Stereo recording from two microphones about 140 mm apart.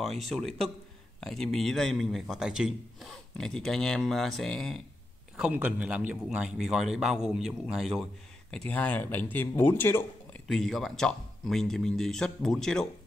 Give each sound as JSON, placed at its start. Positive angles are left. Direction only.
{"t": 0.0, "sound": "a man's voice", "side_deg": 0}
{"t": 5.4, "sound": "a man's voice", "side_deg": -10}
{"t": 10.5, "sound": "a man's voice", "side_deg": 0}